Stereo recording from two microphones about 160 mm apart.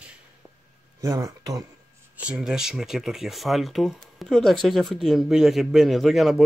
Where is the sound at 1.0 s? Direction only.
20° right (ahead or behind).